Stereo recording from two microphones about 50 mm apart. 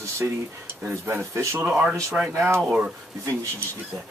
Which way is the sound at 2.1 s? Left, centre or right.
Right.